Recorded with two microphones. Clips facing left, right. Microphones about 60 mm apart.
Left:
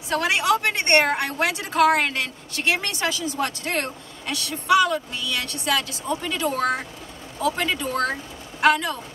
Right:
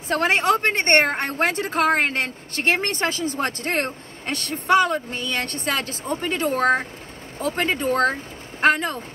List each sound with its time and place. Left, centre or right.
0.1 s a woman's voice: right